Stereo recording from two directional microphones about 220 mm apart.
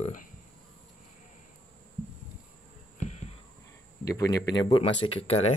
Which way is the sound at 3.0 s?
30° left (ahead or behind).